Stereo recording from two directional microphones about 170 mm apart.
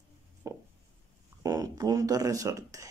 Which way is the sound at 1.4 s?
20° right (ahead or behind).